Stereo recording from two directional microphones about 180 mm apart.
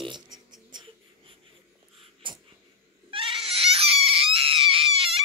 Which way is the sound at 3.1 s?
30° right (ahead or behind).